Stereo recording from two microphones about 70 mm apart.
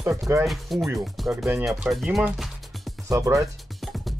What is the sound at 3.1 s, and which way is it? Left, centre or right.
Speech, right.